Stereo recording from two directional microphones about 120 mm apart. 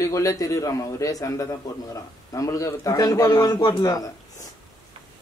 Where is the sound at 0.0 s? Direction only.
25° left (ahead or behind).